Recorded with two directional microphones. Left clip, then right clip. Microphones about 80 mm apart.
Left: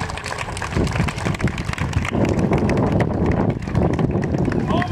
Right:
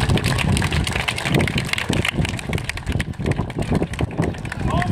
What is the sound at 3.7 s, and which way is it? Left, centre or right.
Vehicle, centre.